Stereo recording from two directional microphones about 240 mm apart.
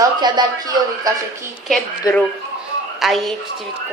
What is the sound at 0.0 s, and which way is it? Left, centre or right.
A man's voice, centre.